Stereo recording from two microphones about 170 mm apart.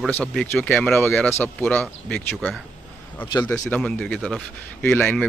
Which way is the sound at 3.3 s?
25° left (ahead or behind).